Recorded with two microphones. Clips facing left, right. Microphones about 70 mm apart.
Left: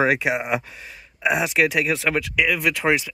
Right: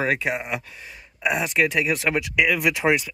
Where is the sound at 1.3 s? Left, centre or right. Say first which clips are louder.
Left 2 dB; centre.